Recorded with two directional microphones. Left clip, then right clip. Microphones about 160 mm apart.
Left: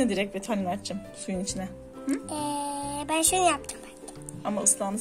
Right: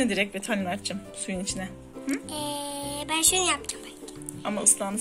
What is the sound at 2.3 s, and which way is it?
Music, 90° left.